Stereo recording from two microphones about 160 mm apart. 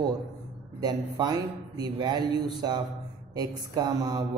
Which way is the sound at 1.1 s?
25° right (ahead or behind).